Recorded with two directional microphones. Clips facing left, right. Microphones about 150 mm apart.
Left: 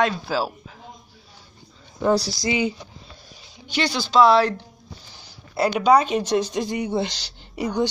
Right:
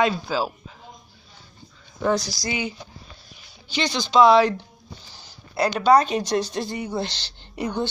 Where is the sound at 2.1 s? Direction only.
35° left (ahead or behind).